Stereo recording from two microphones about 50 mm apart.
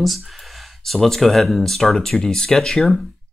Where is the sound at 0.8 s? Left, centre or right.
Centre.